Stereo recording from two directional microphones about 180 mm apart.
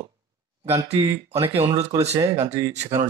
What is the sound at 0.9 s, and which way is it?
Speech, 20° right (ahead or behind).